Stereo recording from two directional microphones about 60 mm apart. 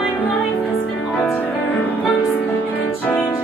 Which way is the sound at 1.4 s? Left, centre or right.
Left.